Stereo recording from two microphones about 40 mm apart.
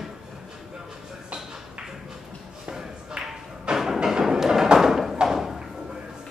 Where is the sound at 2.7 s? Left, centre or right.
Centre.